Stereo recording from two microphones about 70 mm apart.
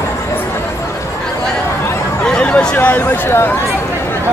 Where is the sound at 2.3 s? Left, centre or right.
Centre.